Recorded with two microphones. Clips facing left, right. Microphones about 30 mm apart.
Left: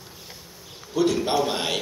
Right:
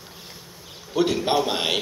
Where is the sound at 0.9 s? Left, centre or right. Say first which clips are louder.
Right 1 dB; right.